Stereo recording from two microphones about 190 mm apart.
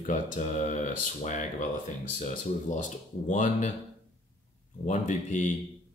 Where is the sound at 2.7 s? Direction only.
40° left (ahead or behind).